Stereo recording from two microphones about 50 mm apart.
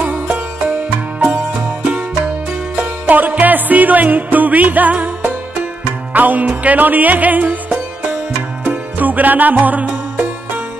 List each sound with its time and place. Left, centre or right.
0.0 s music: right
1.8 s music: right
3.1 s music: right
8.6 s music: right